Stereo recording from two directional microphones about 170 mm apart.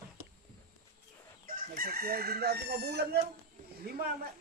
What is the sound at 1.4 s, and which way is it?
Chicken, 55° right (ahead or behind).